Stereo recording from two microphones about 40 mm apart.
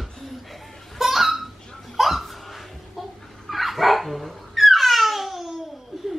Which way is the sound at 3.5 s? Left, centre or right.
Centre.